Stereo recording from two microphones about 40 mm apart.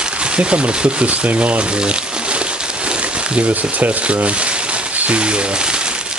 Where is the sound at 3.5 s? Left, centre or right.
Right.